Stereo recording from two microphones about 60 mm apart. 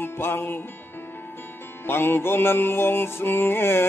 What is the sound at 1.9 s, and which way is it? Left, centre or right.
Music, left.